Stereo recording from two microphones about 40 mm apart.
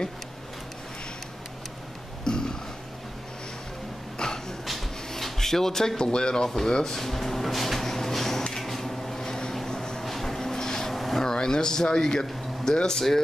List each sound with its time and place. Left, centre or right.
2.2 s burping: centre
4.2 s throat clearing: centre
5.1 s speech: centre
7.0 s a sound: centre
11.2 s speech: centre